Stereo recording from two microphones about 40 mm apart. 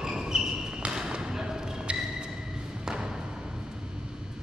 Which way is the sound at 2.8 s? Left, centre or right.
Centre.